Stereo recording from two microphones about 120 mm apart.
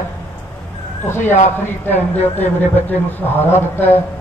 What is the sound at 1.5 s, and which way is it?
A man's voice, 15° left (ahead or behind).